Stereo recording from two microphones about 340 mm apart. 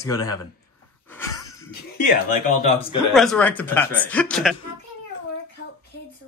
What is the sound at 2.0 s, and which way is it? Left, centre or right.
Speech, left.